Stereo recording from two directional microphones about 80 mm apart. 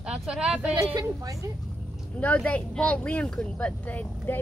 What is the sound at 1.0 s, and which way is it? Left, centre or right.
Speech, right.